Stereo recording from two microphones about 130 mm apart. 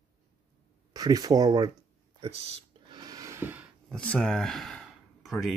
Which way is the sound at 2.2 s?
45° right (ahead or behind).